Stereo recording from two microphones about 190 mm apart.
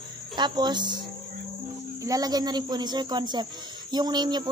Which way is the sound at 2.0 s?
20° right (ahead or behind).